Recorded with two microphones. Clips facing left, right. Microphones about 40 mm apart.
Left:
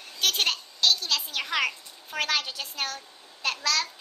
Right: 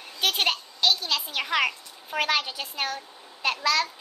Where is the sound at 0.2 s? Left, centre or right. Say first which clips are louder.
Right 1 dB; centre.